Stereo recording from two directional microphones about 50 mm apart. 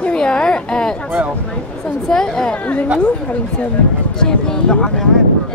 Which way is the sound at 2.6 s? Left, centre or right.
Left.